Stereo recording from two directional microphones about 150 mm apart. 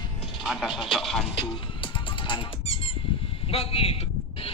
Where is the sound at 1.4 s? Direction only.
35° left (ahead or behind).